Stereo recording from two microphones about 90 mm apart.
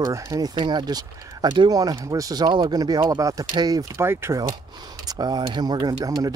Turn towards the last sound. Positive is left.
turn(degrees=-40)  # may be behind; listen again after turning